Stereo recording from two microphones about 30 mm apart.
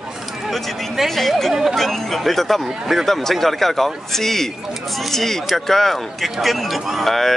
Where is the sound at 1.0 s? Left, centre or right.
Centre.